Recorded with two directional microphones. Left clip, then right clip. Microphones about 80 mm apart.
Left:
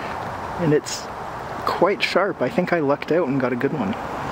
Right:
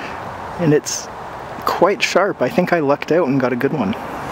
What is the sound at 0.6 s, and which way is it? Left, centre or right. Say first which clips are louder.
Speech: right 4 dB; right.